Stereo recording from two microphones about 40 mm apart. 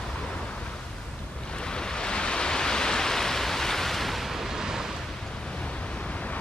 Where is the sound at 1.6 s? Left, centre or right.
Centre.